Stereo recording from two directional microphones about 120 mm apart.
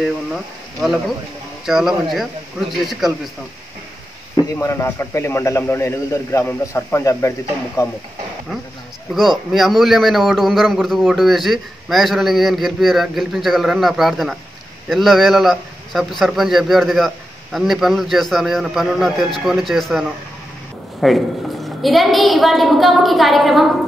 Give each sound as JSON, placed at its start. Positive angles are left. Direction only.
{"t": 0.0, "sound": "a man's voice", "side_deg": 0}
{"t": 4.6, "sound": "a man's voice", "side_deg": 25}
{"t": 9.1, "sound": "a man's voice", "side_deg": 0}